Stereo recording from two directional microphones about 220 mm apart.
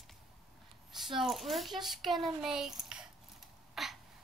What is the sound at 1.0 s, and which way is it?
Speech, centre (ahead or behind).